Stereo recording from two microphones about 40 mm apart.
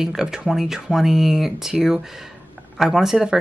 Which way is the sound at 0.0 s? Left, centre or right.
Centre.